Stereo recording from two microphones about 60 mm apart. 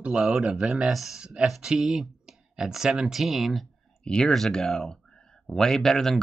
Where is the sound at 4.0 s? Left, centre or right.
Centre.